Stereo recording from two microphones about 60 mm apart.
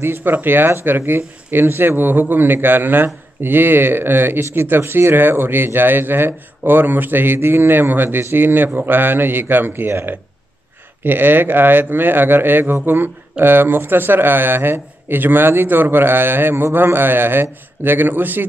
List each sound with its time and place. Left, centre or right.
0.0 s speech: right